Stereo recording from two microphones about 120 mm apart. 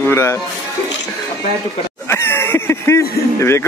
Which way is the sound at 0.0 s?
20° left (ahead or behind).